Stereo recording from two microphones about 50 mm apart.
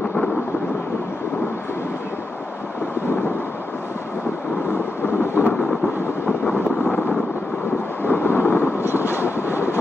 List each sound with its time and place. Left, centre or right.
5.2 s thunder: left
8.0 s vehicle: left
8.8 s train: right